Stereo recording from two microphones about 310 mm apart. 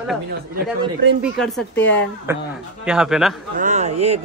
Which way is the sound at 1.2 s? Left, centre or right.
Centre.